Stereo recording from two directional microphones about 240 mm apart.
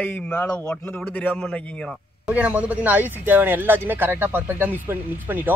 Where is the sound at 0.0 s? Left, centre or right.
Centre.